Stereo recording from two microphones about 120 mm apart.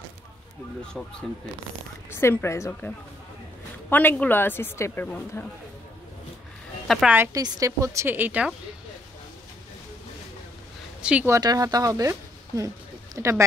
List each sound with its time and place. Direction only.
1.0 s speech: centre (ahead or behind)
2.0 s a woman's voice: 20° left (ahead or behind)
3.9 s a woman's voice: 15° left (ahead or behind)
6.9 s a woman's voice: centre (ahead or behind)
7.3 s a woman's voice: 30° right (ahead or behind); by 8.5 s 15° right (ahead or behind)
11.0 s speech: 10° right (ahead or behind)
11.2 s speech: 30° right (ahead or behind)